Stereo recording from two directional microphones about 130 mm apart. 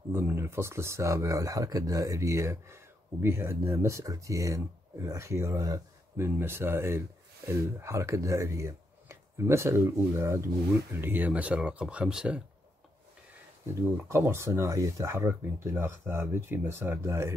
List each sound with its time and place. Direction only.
0.1 s speech: 15° right (ahead or behind)
14.0 s speech: 20° right (ahead or behind)